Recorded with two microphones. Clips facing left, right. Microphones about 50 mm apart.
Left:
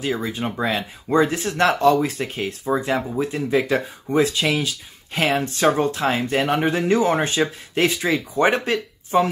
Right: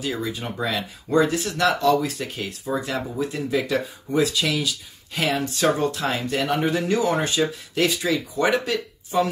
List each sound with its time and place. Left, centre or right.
0.0 s speech: left